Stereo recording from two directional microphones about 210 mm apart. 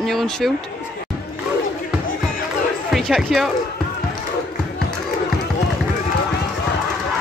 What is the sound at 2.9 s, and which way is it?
Speech, centre (ahead or behind).